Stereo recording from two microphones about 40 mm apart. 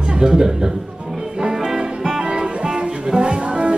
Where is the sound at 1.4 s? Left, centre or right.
Centre.